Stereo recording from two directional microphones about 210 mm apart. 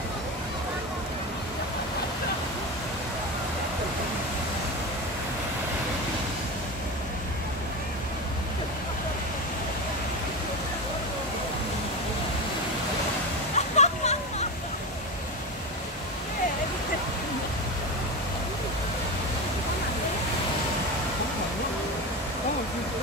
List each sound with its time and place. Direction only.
13.6 s music: 35° left (ahead or behind)